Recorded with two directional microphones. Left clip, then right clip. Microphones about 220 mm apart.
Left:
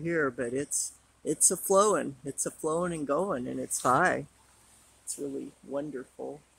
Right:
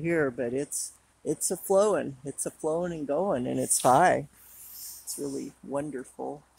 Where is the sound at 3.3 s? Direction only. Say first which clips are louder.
Right 5 dB; 15° right (ahead or behind).